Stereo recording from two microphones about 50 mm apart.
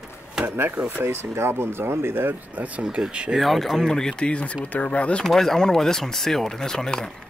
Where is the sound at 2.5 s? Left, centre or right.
Right.